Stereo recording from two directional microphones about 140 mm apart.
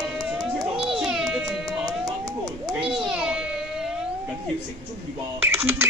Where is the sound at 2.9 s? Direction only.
5° right (ahead or behind).